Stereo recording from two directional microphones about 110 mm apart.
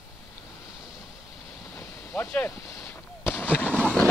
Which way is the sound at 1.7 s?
25° left (ahead or behind).